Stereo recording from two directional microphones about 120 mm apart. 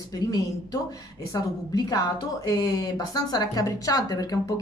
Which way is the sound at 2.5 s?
35° left (ahead or behind).